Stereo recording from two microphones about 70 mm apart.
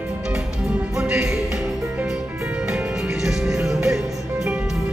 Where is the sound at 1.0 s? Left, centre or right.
Centre.